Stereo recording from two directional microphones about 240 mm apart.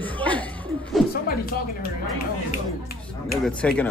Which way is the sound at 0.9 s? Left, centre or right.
Centre.